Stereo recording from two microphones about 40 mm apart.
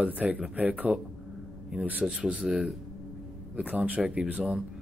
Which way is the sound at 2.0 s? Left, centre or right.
Right.